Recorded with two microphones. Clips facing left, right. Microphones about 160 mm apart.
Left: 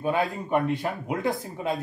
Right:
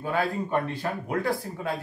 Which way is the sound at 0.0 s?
20° left (ahead or behind).